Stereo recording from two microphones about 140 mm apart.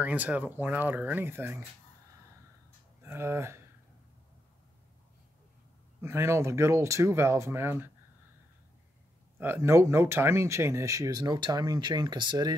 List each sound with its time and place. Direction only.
0.0 s speech: 10° right (ahead or behind)
3.0 s speech: 20° right (ahead or behind)
5.9 s speech: 15° right (ahead or behind)
9.4 s speech: 15° right (ahead or behind)